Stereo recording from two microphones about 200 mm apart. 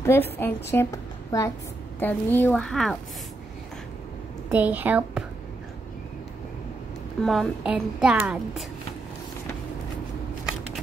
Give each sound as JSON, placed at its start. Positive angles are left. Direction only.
{"t": 0.0, "sound": "a woman's voice", "side_deg": 10}
{"t": 4.5, "sound": "a woman's voice", "side_deg": -10}
{"t": 7.2, "sound": "a woman's voice", "side_deg": 0}